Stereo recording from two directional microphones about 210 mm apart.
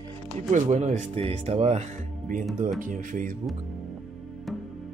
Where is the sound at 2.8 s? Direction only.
40° right (ahead or behind).